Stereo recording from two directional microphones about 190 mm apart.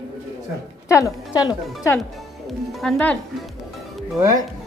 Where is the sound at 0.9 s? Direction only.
15° left (ahead or behind).